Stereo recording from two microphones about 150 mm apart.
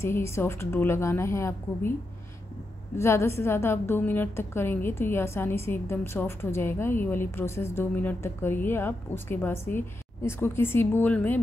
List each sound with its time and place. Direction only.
0.0 s a woman's voice: 20° left (ahead or behind)
3.0 s a woman's voice: 15° left (ahead or behind)